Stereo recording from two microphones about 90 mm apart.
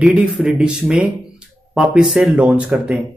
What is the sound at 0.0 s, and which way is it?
Speech, 15° right (ahead or behind).